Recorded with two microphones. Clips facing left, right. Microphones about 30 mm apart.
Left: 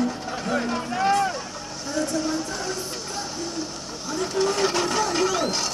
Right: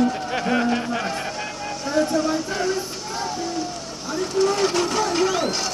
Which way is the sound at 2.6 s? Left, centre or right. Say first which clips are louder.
Right 5 dB; centre.